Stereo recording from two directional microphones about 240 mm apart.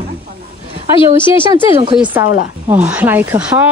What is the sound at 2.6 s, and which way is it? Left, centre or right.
A woman's voice, centre.